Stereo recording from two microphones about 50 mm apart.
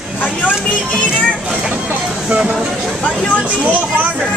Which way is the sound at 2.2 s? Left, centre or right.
Right.